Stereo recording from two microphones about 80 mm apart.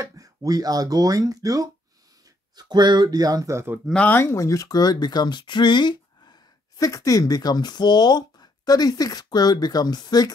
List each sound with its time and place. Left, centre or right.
0.0 s speech: right
2.5 s speech: right
3.5 s speech: right
4.1 s speech: left
6.8 s speech: left